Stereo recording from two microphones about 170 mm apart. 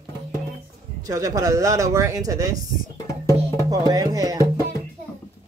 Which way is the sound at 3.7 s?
20° right (ahead or behind).